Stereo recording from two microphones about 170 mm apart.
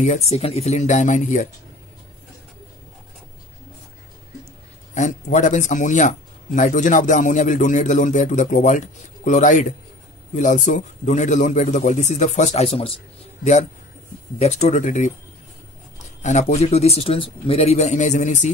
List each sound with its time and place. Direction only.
0.0 s speech: 40° left (ahead or behind)
4.9 s speech: 45° left (ahead or behind)
16.2 s speech: 45° left (ahead or behind)